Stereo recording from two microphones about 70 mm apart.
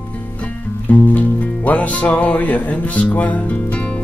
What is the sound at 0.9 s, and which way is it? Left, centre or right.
Music, left.